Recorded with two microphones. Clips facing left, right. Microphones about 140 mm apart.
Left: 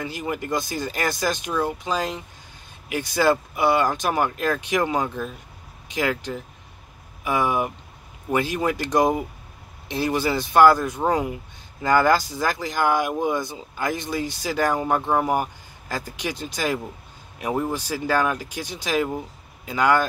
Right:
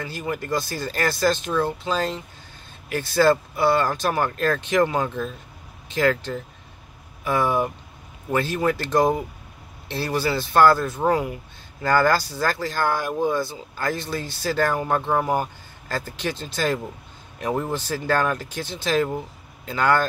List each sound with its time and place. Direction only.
0.0 s speech: 15° left (ahead or behind)